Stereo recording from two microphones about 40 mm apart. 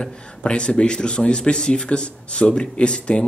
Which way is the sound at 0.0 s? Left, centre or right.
Left.